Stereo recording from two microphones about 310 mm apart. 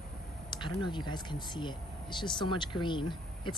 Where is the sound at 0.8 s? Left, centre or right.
Centre.